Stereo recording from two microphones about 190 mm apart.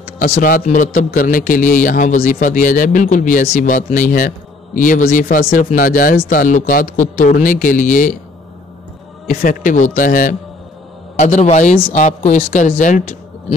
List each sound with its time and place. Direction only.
0.2 s a man's voice: 45° left (ahead or behind)
9.3 s a man's voice: 45° left (ahead or behind)